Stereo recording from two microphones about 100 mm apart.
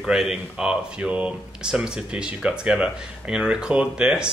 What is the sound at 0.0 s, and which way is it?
Speech, 5° right (ahead or behind).